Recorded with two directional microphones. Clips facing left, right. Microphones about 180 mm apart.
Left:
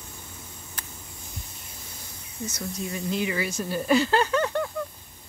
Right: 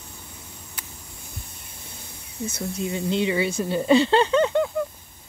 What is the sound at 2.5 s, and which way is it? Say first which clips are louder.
Speech: right 5 dB; 25° right (ahead or behind).